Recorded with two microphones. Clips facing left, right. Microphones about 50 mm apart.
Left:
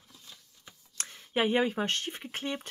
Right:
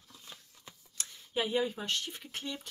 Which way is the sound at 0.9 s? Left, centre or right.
Left.